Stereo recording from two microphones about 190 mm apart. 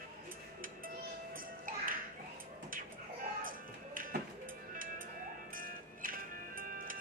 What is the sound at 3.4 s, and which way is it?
Music, 45° right (ahead or behind).